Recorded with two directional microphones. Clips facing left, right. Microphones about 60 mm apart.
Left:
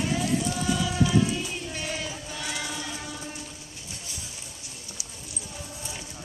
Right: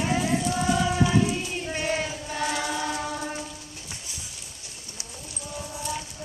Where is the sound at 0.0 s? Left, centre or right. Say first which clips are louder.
Right 2 dB; right.